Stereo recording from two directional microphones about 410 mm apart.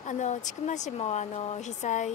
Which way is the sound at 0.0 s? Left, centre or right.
Centre.